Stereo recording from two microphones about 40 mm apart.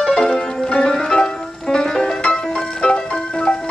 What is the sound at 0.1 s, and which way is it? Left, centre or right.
Music, centre.